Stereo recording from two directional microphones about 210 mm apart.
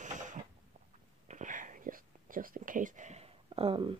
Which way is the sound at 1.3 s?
35° right (ahead or behind).